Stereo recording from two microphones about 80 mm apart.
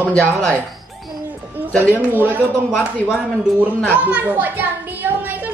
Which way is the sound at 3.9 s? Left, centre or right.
Centre.